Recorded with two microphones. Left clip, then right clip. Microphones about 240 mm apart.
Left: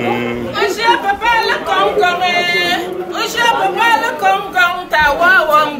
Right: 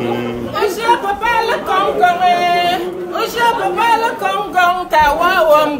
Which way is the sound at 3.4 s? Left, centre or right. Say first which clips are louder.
Left 2 dB; right.